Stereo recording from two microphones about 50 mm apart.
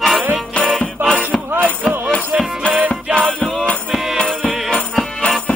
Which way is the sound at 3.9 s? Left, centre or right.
Centre.